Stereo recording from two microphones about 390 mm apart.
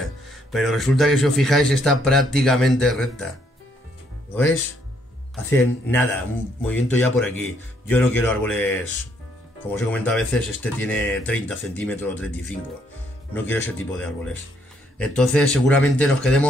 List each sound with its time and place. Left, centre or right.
0.0 s speech: centre
5.3 s speech: centre